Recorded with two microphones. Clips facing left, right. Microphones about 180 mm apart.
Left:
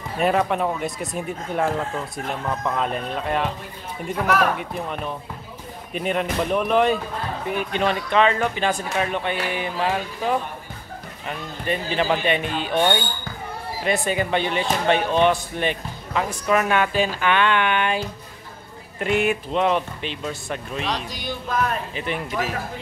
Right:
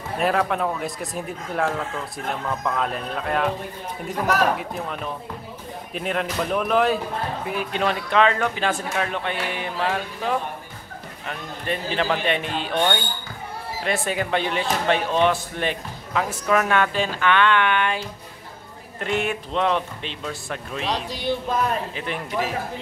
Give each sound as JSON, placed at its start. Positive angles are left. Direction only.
{"t": 0.2, "sound": "speech", "side_deg": 0}
{"t": 4.6, "sound": "speech", "side_deg": 0}
{"t": 20.8, "sound": "speech", "side_deg": -30}
{"t": 21.9, "sound": "speech", "side_deg": 0}